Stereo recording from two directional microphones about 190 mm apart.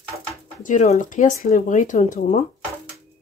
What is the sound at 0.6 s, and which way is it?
Speech, 40° left (ahead or behind).